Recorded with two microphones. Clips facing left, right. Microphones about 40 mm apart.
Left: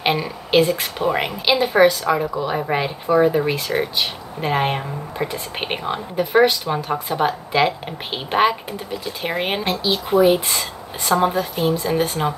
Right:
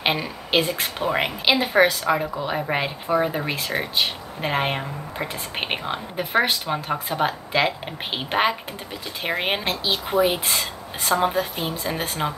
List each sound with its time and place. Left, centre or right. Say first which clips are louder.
0.0 s a woman's voice: left 3 dB; centre